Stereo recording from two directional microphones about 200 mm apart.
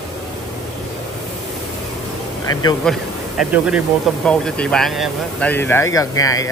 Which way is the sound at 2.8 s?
5° right (ahead or behind).